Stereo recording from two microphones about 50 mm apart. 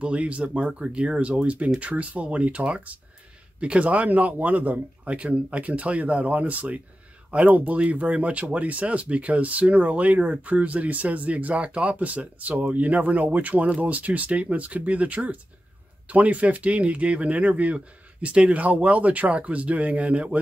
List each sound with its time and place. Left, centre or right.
0.0 s speech: right